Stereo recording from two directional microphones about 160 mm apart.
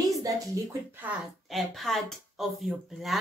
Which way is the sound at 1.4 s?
Centre (ahead or behind).